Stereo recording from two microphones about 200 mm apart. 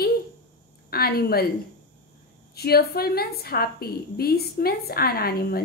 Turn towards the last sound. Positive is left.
turn(degrees=50)  # may be behind; listen again after turning